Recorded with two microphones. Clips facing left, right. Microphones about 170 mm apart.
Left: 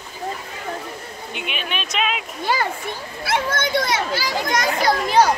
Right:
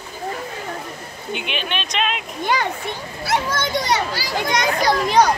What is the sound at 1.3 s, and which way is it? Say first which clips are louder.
Speech: right 3 dB; centre (ahead or behind).